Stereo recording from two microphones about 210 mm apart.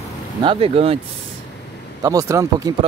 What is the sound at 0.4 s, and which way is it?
Speech, 25° right (ahead or behind).